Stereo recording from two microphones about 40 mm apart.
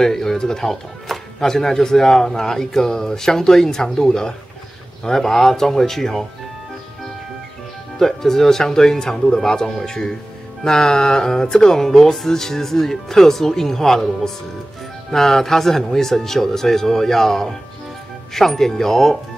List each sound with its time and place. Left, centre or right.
0.0 s speech: centre
8.0 s speech: centre